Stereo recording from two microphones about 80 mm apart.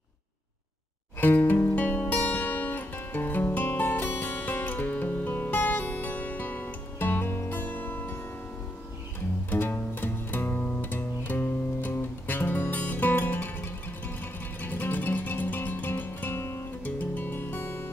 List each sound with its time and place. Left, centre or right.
1.2 s music: left
9.5 s music: left